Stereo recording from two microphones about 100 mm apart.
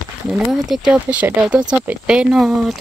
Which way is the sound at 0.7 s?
5° right (ahead or behind).